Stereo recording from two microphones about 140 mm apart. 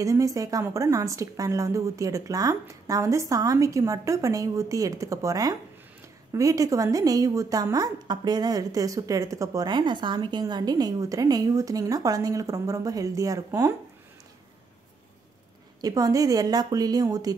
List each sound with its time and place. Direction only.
0.0 s a woman's voice: 25° right (ahead or behind)
15.8 s a woman's voice: 25° right (ahead or behind)